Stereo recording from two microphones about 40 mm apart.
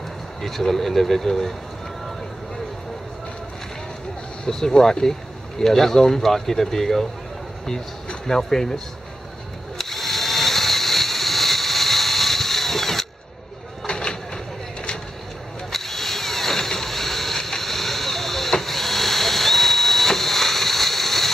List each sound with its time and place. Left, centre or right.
0.4 s speech: centre
4.5 s speech: centre
8.3 s speech: centre
9.8 s a sound: centre
13.8 s a sound: left
15.7 s mechanisms: centre